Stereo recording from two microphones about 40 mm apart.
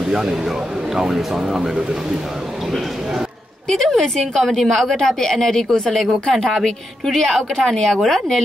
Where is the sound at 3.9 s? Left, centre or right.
Centre.